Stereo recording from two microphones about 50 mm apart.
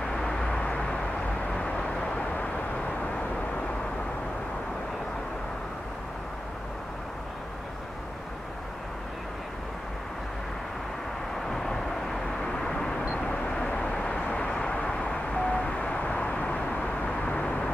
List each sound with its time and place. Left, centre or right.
0.0 s vehicle: centre
11.4 s vehicle: centre